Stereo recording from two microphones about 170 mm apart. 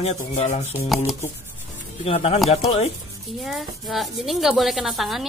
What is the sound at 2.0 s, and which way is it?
Rub, 35° left (ahead or behind).